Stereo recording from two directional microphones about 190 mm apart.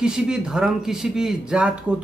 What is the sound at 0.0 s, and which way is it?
Speech, 5° right (ahead or behind).